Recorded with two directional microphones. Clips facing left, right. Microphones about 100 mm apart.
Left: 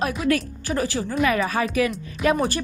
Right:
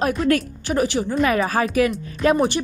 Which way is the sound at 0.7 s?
20° right (ahead or behind).